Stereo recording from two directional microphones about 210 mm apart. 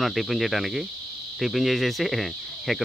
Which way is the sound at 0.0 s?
Centre (ahead or behind).